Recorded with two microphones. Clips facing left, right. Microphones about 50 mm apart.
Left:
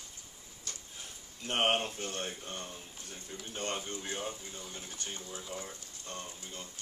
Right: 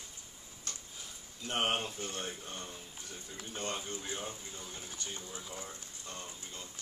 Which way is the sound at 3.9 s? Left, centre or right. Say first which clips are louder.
Left 2 dB; left.